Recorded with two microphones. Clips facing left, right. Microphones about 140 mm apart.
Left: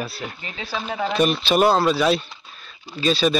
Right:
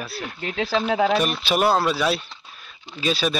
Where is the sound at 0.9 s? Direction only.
90° right.